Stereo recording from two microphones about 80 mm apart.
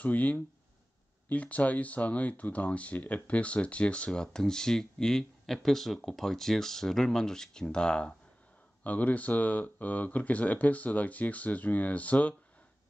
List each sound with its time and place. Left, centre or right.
0.0 s speech: centre